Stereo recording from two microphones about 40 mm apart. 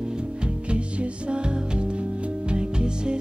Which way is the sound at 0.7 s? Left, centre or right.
Right.